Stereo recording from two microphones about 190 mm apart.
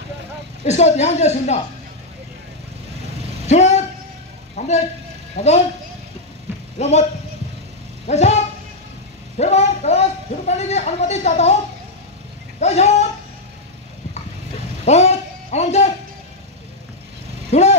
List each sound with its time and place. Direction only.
0.7 s speech: 35° left (ahead or behind)
3.4 s vehicle: 35° left (ahead or behind)
5.3 s speech: 35° left (ahead or behind)
6.8 s speech: 35° left (ahead or behind)
8.1 s a man's voice: 35° left (ahead or behind)
12.5 s a sound: 35° left (ahead or behind)
14.9 s a sound: 35° left (ahead or behind)
17.5 s vehicle: 35° left (ahead or behind)